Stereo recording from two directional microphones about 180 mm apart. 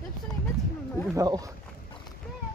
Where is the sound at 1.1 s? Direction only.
20° right (ahead or behind).